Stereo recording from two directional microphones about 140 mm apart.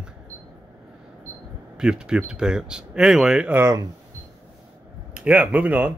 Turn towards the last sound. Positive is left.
turn(degrees=-10)  # may be behind; listen again after turning